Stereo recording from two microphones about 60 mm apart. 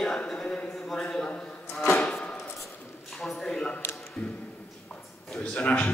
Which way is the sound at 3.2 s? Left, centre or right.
Centre.